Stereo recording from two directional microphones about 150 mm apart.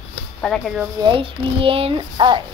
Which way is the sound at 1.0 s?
35° right (ahead or behind).